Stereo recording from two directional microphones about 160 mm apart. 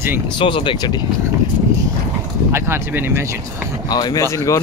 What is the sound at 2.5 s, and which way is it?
Speech, 15° right (ahead or behind).